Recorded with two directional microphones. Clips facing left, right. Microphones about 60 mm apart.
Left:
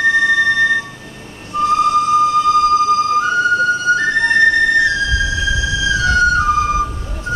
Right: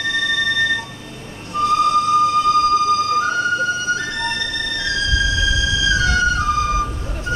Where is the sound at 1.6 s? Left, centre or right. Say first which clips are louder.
Left 2 dB; left.